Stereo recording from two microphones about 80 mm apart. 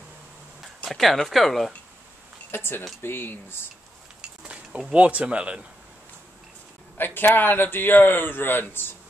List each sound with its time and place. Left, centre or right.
0.8 s speech: centre
2.5 s a man's voice: left
4.2 s speech: centre
7.0 s a man's voice: left